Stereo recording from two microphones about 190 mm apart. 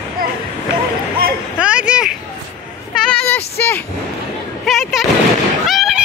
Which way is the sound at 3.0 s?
10° left (ahead or behind).